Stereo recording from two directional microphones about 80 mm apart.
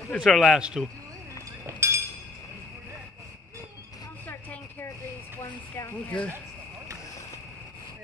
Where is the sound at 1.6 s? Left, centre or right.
Right.